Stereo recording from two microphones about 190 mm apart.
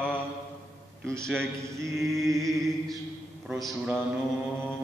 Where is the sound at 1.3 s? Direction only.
15° right (ahead or behind).